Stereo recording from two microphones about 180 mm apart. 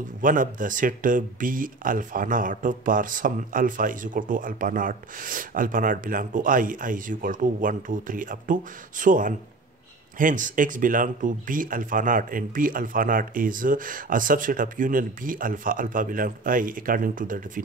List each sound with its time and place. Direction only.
0.2 s speech: 50° right (ahead or behind)